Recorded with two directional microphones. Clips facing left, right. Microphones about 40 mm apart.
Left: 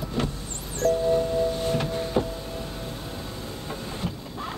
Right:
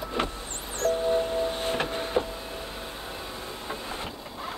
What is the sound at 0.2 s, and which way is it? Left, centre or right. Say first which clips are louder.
Vehicle: left 1 dB; right.